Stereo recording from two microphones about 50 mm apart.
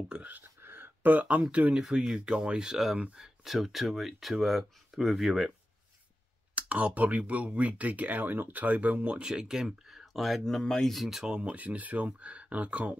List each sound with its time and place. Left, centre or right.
0.3 s a sound: right
1.5 s speech: right
1.8 s speech: centre
6.5 s speech: right; by 10.4 s centre
10.4 s speech: centre
10.9 s speech: centre
11.2 s speech: centre
11.5 s speech: right